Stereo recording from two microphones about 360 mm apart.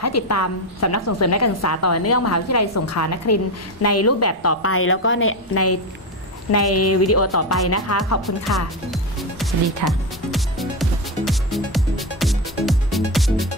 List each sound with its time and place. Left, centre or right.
0.0 s a woman's voice: left
8.5 s music: centre